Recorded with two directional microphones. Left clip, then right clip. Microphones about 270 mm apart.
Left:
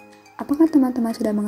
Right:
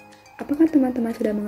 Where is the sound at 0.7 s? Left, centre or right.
Centre.